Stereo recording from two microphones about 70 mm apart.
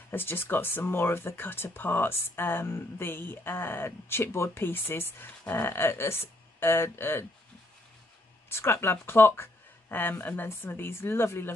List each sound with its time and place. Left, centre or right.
0.1 s speech: left
8.5 s speech: left